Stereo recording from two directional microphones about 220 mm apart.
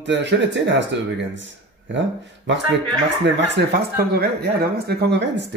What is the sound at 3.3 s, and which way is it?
Speech, 50° right (ahead or behind).